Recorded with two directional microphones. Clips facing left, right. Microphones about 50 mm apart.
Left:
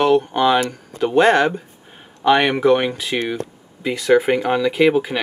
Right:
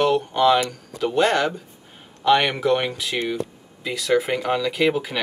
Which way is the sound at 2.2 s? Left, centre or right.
Centre.